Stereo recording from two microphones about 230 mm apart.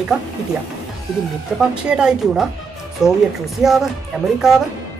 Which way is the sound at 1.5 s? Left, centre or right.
Centre.